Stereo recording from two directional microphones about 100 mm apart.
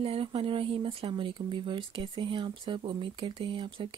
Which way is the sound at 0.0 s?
80° right.